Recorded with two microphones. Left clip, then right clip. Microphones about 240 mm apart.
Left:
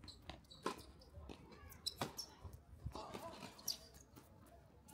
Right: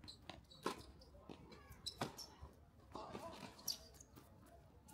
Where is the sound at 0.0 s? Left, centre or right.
Centre.